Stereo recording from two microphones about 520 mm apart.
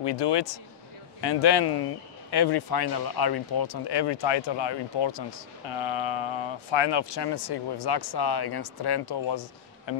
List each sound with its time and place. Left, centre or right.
0.0 s speech: left